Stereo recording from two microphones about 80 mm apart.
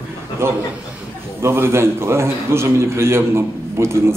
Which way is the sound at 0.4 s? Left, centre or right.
Right.